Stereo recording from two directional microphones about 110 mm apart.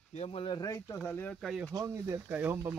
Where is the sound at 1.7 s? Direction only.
35° right (ahead or behind).